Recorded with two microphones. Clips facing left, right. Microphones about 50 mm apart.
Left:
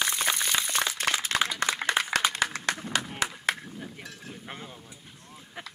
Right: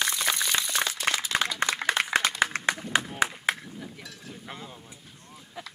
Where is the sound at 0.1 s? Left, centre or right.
Centre.